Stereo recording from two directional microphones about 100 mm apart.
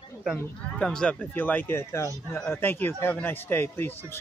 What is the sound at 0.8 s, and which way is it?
Speech, 10° left (ahead or behind).